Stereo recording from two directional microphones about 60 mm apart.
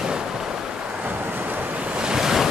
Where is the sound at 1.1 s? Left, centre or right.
Right; by 2.5 s centre.